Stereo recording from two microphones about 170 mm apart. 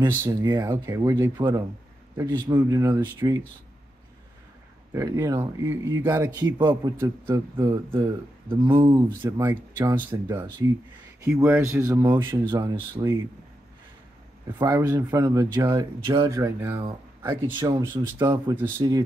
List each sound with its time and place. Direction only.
0.2 s speech: 20° right (ahead or behind)
4.9 s speech: 15° right (ahead or behind)
14.6 s speech: 20° right (ahead or behind)
17.6 s speech: 25° right (ahead or behind)